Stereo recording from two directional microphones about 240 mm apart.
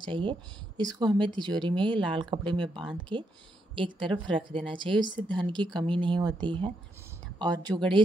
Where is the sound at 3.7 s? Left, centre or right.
Right.